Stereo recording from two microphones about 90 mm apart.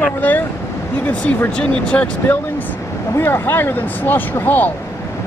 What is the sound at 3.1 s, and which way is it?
Speech, 25° left (ahead or behind).